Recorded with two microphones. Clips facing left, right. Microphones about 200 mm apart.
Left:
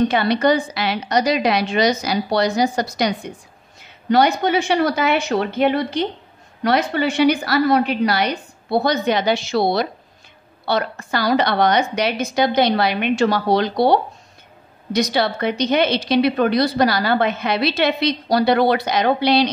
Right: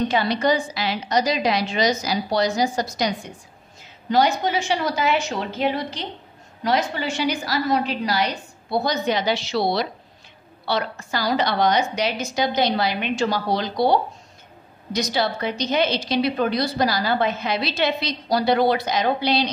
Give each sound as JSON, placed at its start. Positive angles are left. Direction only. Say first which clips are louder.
{"t": 0.1, "sound": "a woman's voice", "louder": "left 4 dB", "side_deg": 65}